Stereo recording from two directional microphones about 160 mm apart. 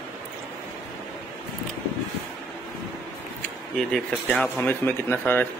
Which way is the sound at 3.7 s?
5° left (ahead or behind).